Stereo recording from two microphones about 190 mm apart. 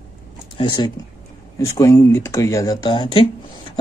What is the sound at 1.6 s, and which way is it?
A man's voice, 15° left (ahead or behind).